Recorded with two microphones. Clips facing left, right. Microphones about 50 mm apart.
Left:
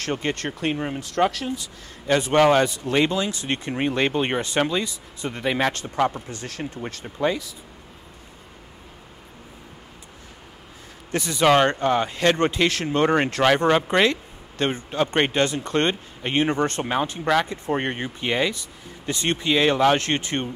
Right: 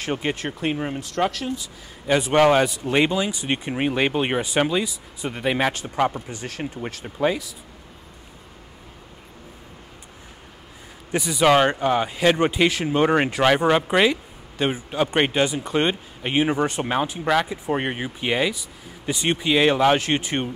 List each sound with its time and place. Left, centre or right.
0.0 s speech: centre
11.1 s speech: centre